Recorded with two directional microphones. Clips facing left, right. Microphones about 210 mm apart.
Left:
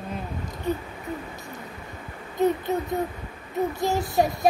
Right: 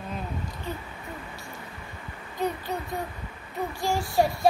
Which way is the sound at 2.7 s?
20° left (ahead or behind).